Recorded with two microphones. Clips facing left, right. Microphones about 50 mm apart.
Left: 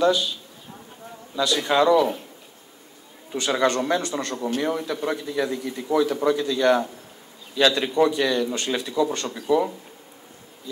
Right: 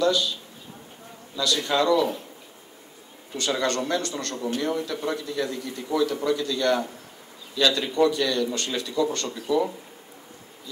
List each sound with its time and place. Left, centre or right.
0.0 s a man's voice: left
1.3 s a man's voice: left
3.3 s a man's voice: left